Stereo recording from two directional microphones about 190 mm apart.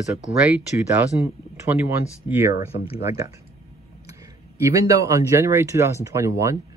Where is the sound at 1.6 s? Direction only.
10° right (ahead or behind).